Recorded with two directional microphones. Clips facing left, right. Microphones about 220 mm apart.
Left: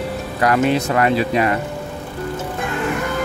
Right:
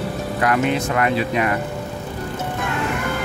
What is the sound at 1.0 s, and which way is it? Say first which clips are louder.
Speech: left 3 dB; 30° left (ahead or behind).